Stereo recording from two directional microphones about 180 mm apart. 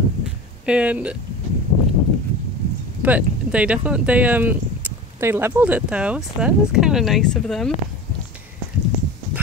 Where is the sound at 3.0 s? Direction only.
10° right (ahead or behind).